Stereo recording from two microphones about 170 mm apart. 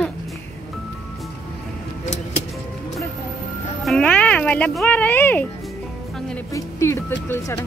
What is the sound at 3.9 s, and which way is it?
Music, 5° left (ahead or behind).